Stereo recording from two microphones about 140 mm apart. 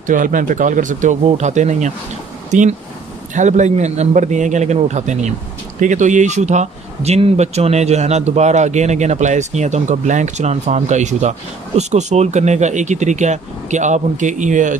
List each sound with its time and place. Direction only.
0.0 s a man's voice: 70° right (ahead or behind)